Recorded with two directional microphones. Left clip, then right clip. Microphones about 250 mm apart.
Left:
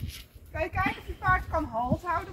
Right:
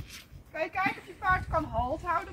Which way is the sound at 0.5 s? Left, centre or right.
Centre.